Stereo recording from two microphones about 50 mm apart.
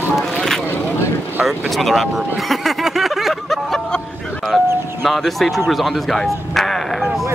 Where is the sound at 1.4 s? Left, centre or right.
Centre.